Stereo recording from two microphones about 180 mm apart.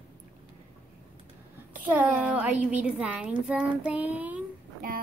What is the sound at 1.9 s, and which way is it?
A child's voice, 10° right (ahead or behind).